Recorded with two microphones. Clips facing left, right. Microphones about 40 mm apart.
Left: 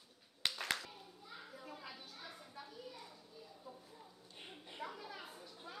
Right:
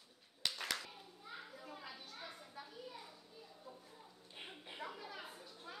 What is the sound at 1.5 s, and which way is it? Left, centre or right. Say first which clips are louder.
Children playing: even; centre.